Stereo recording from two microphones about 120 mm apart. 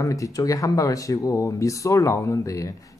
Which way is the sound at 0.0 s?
25° left (ahead or behind).